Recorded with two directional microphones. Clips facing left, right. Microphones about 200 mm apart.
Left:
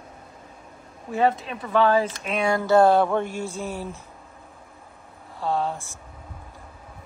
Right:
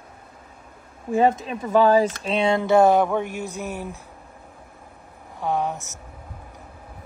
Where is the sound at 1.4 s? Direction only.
45° right (ahead or behind); by 4.0 s 15° right (ahead or behind).